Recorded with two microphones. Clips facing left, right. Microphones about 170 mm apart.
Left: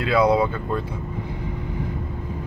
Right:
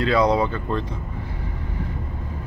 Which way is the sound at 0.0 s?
10° left (ahead or behind).